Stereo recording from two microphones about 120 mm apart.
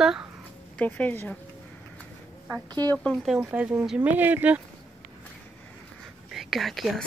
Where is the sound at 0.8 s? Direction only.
15° left (ahead or behind).